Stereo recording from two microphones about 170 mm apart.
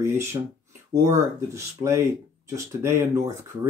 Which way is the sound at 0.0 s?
15° right (ahead or behind).